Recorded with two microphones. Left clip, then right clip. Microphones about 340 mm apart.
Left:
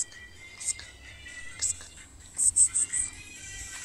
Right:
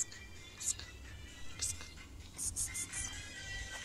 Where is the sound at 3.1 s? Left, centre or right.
Right.